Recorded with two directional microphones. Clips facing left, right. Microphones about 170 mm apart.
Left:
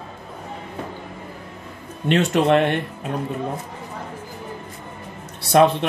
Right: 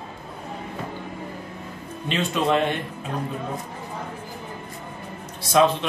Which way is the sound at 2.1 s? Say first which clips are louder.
Left 5 dB; 70° left (ahead or behind).